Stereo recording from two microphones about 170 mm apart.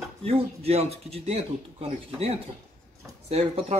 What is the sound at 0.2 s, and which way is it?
Speech, 35° right (ahead or behind).